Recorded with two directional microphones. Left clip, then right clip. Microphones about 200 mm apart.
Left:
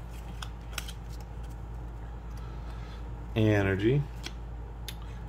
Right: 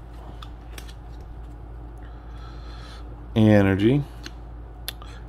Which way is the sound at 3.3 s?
40° right (ahead or behind).